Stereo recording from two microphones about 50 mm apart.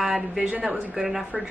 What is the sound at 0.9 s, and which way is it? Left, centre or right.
Speech, centre.